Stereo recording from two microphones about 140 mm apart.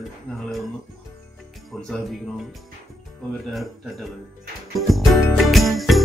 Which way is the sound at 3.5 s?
Centre (ahead or behind).